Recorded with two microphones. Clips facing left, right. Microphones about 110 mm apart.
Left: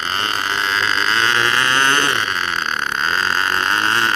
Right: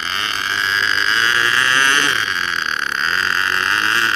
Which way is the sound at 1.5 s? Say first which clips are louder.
Left 1 dB; 45° left (ahead or behind).